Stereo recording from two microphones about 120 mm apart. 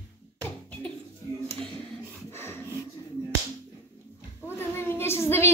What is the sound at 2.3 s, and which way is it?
Dog, 20° left (ahead or behind).